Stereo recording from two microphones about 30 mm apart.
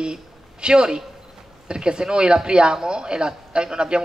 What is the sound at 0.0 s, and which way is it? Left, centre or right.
A woman's voice, right.